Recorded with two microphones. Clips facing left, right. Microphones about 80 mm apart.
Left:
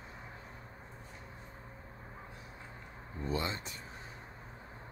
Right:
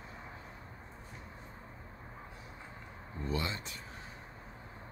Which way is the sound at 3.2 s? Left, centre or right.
Left.